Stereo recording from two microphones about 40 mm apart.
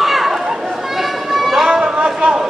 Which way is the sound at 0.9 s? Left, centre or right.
Centre.